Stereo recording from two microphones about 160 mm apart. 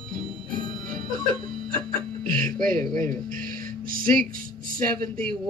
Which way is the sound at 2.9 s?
60° right (ahead or behind).